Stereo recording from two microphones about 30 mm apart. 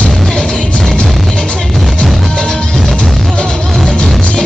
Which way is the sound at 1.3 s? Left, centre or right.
Left.